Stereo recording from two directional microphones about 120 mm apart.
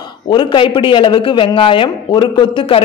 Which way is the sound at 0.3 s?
40° left (ahead or behind).